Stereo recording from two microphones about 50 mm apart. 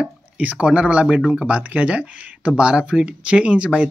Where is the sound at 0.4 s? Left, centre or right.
Right.